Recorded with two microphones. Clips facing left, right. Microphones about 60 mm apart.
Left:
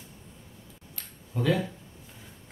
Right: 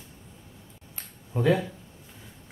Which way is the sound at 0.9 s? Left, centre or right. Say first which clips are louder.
Right 3 dB; right.